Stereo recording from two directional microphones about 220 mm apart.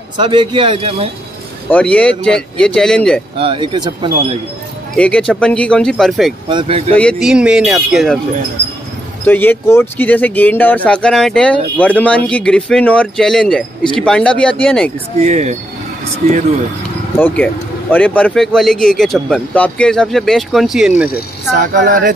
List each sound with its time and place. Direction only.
0.2 s a man's voice: 20° right (ahead or behind)
1.7 s speech: 5° left (ahead or behind)
3.3 s a man's voice: 25° right (ahead or behind)
4.9 s speech: 5° left (ahead or behind)
9.2 s speech: 10° left (ahead or behind)
15.1 s speech: 30° right (ahead or behind)
17.9 s speech: 5° left (ahead or behind)
21.7 s speech: 35° right (ahead or behind)